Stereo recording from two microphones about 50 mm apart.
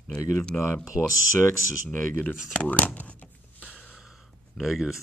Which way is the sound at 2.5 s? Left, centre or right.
Left.